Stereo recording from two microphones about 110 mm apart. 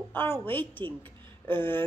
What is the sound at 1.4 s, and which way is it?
Speech, 20° left (ahead or behind).